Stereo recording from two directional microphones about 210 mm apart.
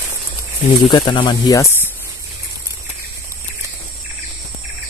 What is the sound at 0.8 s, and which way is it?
Speech, 20° left (ahead or behind).